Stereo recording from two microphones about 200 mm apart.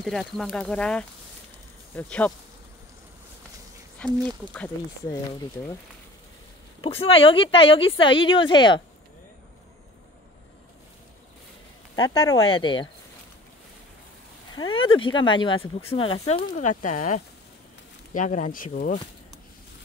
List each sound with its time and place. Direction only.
0.0 s speech: centre (ahead or behind)
4.0 s speech: 5° left (ahead or behind)
6.8 s speech: 30° left (ahead or behind)
11.9 s speech: 20° left (ahead or behind)
14.5 s speech: 25° left (ahead or behind)
16.3 s speech: 40° left (ahead or behind)